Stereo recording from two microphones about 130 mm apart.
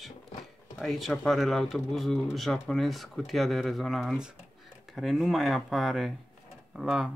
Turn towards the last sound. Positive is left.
turn(degrees=-5)  # may be behind; listen again after turning